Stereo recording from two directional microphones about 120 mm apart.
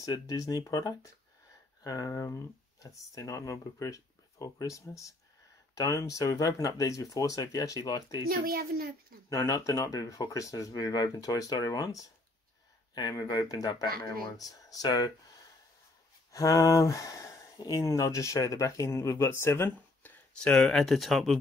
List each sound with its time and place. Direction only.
0.0 s speech: 30° left (ahead or behind)
9.3 s speech: 25° left (ahead or behind)
16.3 s speech: 30° left (ahead or behind)
20.3 s speech: 5° left (ahead or behind)